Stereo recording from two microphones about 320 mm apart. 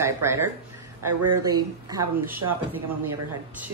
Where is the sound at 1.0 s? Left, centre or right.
Right.